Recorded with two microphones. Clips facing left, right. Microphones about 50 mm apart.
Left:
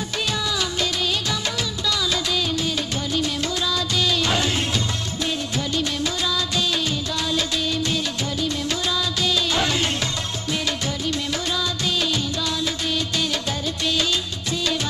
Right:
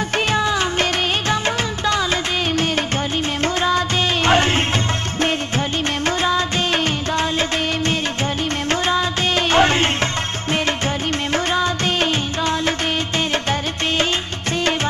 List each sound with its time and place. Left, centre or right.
0.3 s music: right
3.6 s music: right
6.0 s music of bollywood: right
8.6 s music of bollywood: right
11.3 s music: right
13.3 s music of bollywood: right